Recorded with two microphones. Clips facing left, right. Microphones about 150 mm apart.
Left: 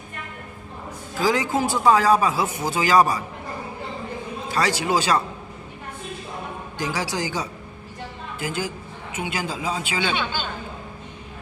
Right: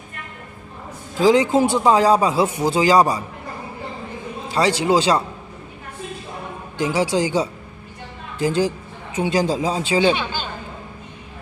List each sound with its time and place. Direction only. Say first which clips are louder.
1.2 s speech: right 7 dB; 25° right (ahead or behind)
4.5 s speech: right 5 dB; 25° right (ahead or behind)
6.8 s speech: right 7 dB; 25° right (ahead or behind)